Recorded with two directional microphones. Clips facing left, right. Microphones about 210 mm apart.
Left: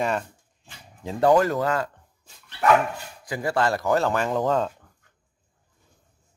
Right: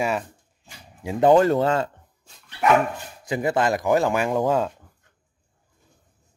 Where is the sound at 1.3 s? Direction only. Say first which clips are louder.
Right 4 dB; 25° right (ahead or behind).